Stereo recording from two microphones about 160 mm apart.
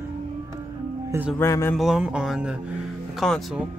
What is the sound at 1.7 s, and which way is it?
Speech, 5° right (ahead or behind).